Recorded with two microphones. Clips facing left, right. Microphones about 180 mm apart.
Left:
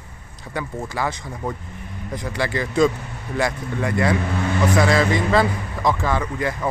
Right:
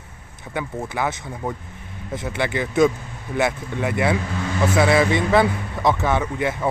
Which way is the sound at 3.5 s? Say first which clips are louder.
Even; 5° right (ahead or behind).